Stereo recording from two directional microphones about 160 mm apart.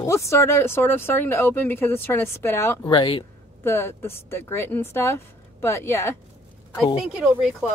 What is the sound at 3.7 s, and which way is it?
A woman's voice, 15° left (ahead or behind).